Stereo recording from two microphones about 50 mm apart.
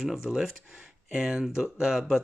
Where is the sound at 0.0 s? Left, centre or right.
Centre.